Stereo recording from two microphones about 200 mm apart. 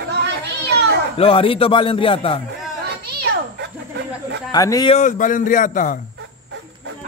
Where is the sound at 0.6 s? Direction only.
55° right (ahead or behind).